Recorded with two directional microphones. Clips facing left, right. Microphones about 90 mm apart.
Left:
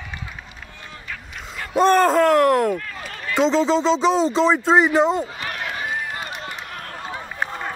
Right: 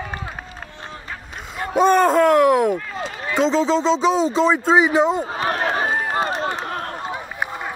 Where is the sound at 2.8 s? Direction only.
20° right (ahead or behind).